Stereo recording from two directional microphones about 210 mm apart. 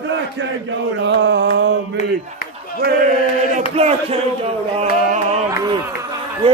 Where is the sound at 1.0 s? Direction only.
55° right (ahead or behind).